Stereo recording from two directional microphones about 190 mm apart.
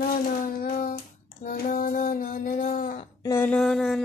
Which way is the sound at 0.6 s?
45° left (ahead or behind).